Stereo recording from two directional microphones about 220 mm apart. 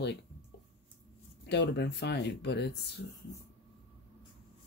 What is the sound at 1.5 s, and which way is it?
Speech, 50° left (ahead or behind).